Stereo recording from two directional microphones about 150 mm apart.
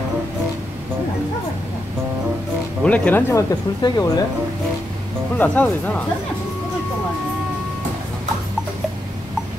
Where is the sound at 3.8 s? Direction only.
25° left (ahead or behind).